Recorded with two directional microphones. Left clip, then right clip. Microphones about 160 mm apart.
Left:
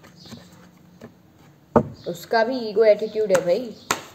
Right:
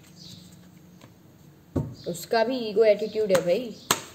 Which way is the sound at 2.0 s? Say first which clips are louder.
Left 3 dB; 25° right (ahead or behind).